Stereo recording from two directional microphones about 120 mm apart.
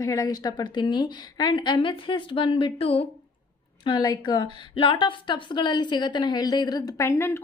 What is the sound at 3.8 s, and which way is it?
A woman's voice, 40° left (ahead or behind).